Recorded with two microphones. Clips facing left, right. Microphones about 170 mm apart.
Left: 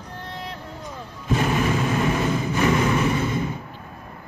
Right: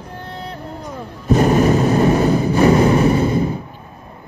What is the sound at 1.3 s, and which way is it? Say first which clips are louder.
Vehicle: right 9 dB; 40° right (ahead or behind).